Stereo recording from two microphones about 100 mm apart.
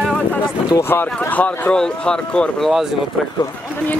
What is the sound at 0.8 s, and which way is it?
Speech, 25° left (ahead or behind).